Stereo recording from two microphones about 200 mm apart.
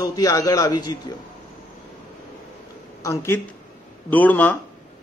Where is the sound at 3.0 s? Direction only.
15° left (ahead or behind).